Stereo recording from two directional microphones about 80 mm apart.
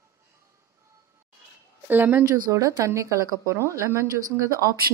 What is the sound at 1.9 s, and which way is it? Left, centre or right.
Speech, right.